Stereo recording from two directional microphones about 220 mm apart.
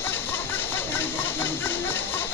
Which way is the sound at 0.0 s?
10° left (ahead or behind).